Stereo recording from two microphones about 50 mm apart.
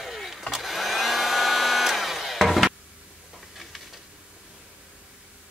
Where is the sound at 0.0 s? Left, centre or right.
Centre.